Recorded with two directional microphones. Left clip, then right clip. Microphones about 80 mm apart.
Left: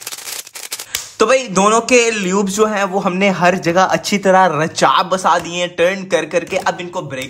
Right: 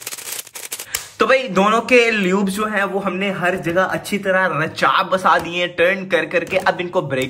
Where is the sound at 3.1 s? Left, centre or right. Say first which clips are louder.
Left 6 dB; left.